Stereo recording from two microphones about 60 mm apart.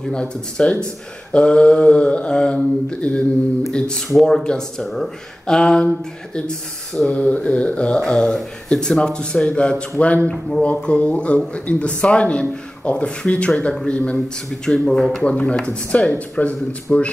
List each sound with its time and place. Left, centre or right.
0.0 s a man's voice: centre
7.2 s a man's voice: left
15.2 s a man's voice: centre